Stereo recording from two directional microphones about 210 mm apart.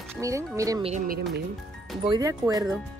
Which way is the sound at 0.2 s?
15° right (ahead or behind).